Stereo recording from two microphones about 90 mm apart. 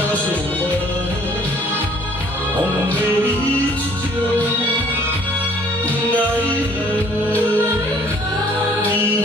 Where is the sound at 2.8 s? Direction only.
15° left (ahead or behind).